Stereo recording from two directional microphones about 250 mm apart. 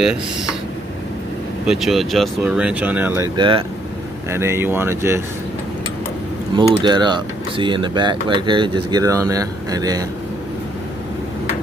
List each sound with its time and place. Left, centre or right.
1.7 s speech: centre
3.3 s speech: centre
6.5 s speech: centre